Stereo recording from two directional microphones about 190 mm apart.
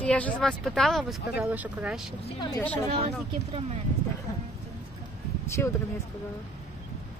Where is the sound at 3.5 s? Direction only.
30° right (ahead or behind).